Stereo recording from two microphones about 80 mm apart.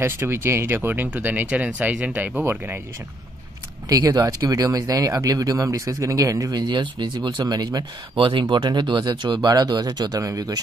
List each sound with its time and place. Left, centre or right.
0.0 s speech: right
3.9 s speech: right
6.5 s speech: right
8.2 s speech: right